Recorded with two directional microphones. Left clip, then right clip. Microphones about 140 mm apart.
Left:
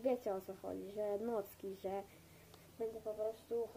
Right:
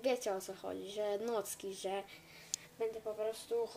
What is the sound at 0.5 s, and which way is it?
A woman's voice, 30° right (ahead or behind).